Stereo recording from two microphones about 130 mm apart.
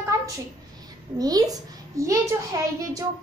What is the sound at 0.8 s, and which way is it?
A woman's voice, 30° right (ahead or behind).